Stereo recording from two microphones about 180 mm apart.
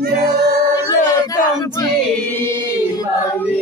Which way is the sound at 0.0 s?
60° right (ahead or behind).